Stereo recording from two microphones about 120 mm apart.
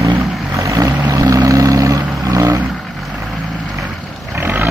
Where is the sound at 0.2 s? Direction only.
25° right (ahead or behind).